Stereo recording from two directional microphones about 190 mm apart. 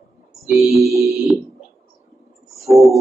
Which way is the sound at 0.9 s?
15° right (ahead or behind).